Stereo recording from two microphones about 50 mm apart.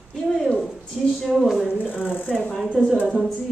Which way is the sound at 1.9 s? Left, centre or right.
Left.